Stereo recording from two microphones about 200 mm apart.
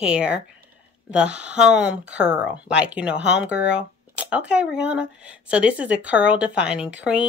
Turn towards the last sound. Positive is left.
turn(degrees=-5)  # may be behind; listen again after turning